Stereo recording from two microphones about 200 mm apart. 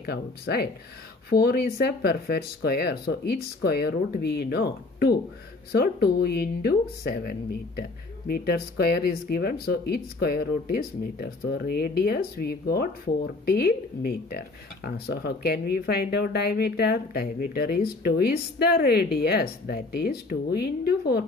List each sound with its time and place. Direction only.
0.0 s speech: 55° left (ahead or behind)